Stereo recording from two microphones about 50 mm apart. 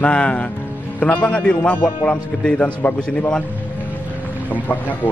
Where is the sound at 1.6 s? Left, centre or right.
Left.